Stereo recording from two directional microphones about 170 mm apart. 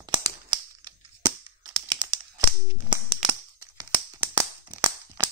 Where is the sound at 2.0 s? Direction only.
25° right (ahead or behind).